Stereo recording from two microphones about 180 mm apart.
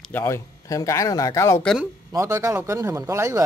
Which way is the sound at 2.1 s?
15° right (ahead or behind).